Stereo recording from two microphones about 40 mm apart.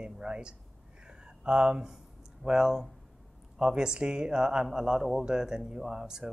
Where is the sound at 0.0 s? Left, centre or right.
Right.